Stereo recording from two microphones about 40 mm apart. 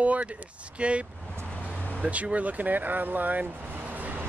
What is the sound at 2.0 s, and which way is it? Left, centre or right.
Speech, right.